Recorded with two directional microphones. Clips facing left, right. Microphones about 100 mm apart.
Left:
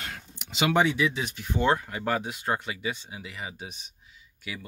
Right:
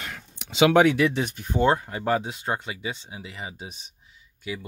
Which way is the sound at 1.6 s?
25° right (ahead or behind).